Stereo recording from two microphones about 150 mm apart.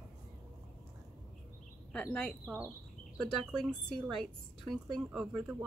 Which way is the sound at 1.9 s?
5° left (ahead or behind).